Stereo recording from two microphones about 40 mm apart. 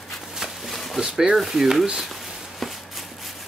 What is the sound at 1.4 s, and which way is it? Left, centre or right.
Speech, centre.